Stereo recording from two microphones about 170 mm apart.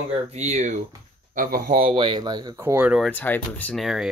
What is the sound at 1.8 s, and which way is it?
Speech, 30° right (ahead or behind).